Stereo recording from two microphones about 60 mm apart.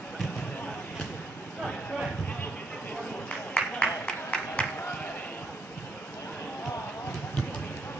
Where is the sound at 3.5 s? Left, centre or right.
Centre.